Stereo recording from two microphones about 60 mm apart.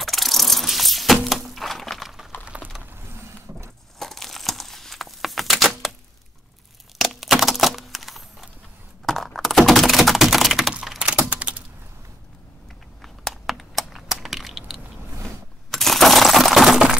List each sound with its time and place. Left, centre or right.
0.0 s a sound: centre
2.5 s mechanisms: right
4.0 s crumpling: centre
7.0 s crack: centre
9.0 s computer keyboard: centre
11.0 s typing: centre
13.0 s a sound: centre
14.1 s crushing: centre
15.7 s coin: centre